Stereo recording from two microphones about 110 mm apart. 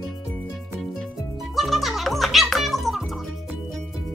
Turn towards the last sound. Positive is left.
turn(degrees=0)  # may be behind; listen again after turning